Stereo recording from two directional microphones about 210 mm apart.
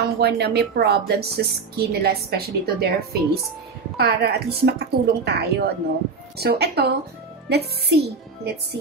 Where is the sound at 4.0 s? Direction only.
50° right (ahead or behind).